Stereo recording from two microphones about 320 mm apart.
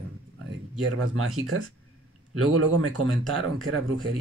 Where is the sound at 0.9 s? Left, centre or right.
Right.